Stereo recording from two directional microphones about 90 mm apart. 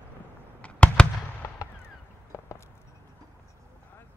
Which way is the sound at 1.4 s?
35° left (ahead or behind).